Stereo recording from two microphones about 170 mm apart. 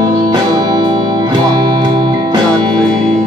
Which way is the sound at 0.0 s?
25° right (ahead or behind).